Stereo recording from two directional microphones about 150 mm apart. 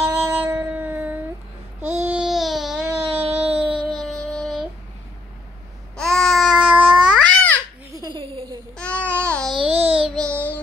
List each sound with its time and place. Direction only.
0.0 s a sound: 15° right (ahead or behind)
1.8 s babbling: 10° right (ahead or behind)
3.9 s music: 5° left (ahead or behind)
5.9 s babbling: 5° left (ahead or behind)
7.2 s babbling: 10° left (ahead or behind)
7.9 s a sound: 25° right (ahead or behind)
8.7 s babbling: 10° left (ahead or behind)
9.7 s child singing: 40° right (ahead or behind)
10.2 s child singing: 10° left (ahead or behind)